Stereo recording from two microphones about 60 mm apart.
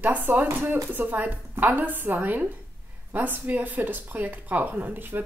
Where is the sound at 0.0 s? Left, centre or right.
Right.